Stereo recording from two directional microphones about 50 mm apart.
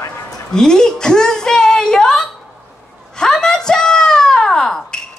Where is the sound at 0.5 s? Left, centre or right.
Centre.